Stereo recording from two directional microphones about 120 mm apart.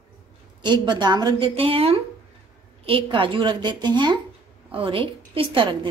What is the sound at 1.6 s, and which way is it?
A woman's voice, 50° right (ahead or behind).